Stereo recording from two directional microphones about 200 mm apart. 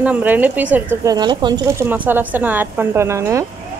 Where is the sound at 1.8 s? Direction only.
10° right (ahead or behind).